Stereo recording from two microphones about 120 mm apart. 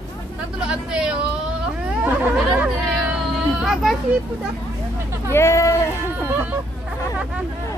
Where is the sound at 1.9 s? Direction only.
10° right (ahead or behind).